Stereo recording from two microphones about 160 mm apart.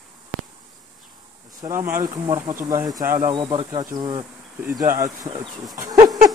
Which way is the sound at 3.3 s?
30° right (ahead or behind).